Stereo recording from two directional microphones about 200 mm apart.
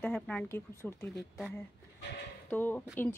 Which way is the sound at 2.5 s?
10° left (ahead or behind).